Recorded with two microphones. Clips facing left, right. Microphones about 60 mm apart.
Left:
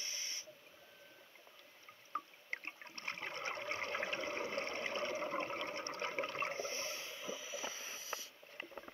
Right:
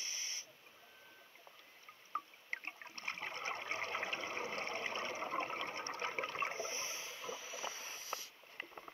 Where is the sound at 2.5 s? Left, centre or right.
Right.